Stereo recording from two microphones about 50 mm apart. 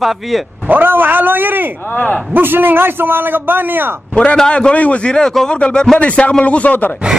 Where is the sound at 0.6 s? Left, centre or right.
Right.